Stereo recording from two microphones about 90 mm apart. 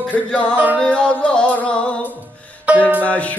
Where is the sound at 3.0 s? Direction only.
15° left (ahead or behind).